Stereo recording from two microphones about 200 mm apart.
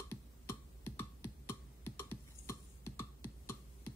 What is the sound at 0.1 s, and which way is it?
Music, 10° left (ahead or behind).